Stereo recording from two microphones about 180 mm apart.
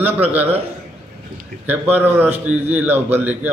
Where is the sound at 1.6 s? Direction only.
10° right (ahead or behind).